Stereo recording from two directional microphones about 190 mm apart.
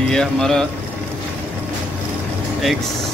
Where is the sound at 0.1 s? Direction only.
5° left (ahead or behind).